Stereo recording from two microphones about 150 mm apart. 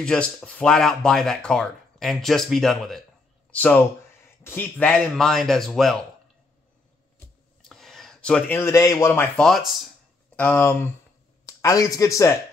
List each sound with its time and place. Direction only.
0.0 s speech: 5° left (ahead or behind)
4.4 s speech: 15° left (ahead or behind)
7.6 s a man's voice: centre (ahead or behind)
9.4 s speech: centre (ahead or behind)
10.3 s speech: 10° left (ahead or behind)